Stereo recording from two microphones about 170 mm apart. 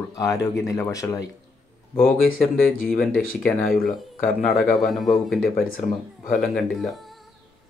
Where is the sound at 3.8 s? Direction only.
5° left (ahead or behind).